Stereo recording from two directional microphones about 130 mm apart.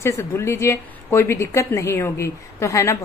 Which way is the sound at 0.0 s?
20° left (ahead or behind).